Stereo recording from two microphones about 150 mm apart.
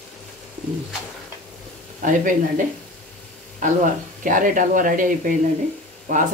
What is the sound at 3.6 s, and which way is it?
Speech, 60° right (ahead or behind).